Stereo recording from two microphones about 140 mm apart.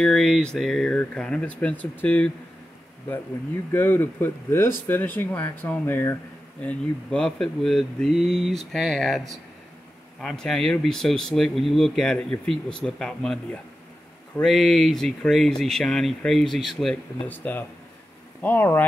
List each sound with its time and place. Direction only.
0.0 s speech: centre (ahead or behind)
3.7 s speech: 15° left (ahead or behind)
16.9 s speech: 15° left (ahead or behind)